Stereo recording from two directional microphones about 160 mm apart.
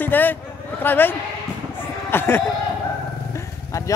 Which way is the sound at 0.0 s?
10° left (ahead or behind).